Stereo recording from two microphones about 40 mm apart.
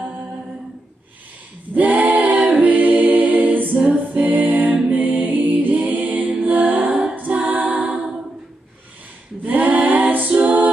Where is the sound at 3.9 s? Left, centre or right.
Right.